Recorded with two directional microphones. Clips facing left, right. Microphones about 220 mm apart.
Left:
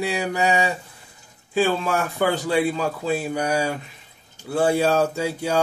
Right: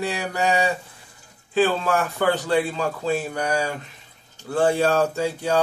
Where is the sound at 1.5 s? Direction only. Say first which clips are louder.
Right 1 dB; 10° left (ahead or behind).